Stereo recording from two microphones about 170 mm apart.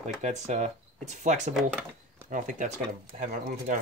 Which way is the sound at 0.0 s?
45° right (ahead or behind).